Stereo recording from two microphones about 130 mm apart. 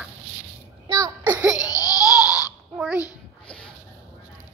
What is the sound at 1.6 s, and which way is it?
Laughter, 25° left (ahead or behind).